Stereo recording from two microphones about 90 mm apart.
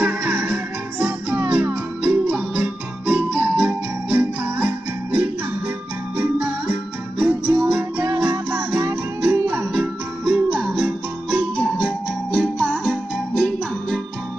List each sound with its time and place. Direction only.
0.0 s music: 15° right (ahead or behind)
2.0 s music: 15° right (ahead or behind)
9.7 s music: 5° right (ahead or behind); by 14.0 s 10° left (ahead or behind)